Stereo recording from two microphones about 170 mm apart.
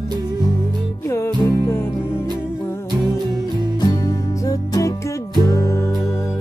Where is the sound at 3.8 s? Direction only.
20° left (ahead or behind).